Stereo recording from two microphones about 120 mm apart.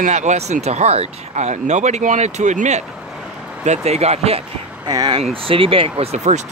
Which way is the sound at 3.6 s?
65° right (ahead or behind).